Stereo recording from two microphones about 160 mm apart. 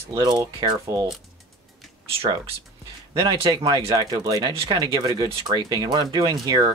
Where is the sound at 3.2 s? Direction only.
25° right (ahead or behind).